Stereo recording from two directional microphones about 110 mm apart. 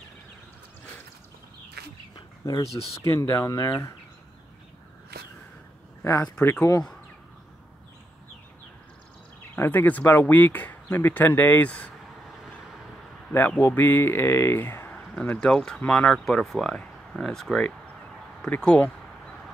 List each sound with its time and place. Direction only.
2.1 s speech: 35° left (ahead or behind)
6.4 s speech: 25° left (ahead or behind)
9.6 s speech: 15° left (ahead or behind)
13.6 s speech: 20° left (ahead or behind)
15.0 s speech: 5° left (ahead or behind)